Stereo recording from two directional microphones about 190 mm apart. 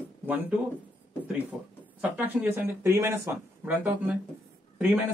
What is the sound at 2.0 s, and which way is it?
A man's voice, 10° right (ahead or behind).